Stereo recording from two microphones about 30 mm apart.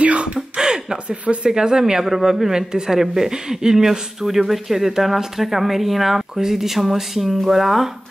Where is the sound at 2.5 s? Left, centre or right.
Right.